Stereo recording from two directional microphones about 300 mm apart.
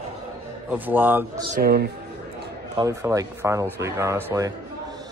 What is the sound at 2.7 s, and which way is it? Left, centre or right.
Speech, centre.